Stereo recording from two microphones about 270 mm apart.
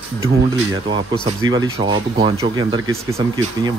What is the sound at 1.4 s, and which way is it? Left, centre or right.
Speech, centre.